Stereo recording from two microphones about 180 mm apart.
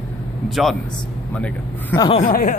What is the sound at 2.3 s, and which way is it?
Speech, 50° left (ahead or behind).